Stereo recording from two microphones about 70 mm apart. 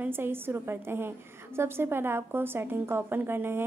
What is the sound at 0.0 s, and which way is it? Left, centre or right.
A woman's voice, right.